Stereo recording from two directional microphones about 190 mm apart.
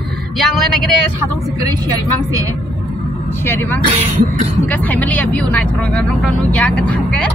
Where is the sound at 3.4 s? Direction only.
10° left (ahead or behind).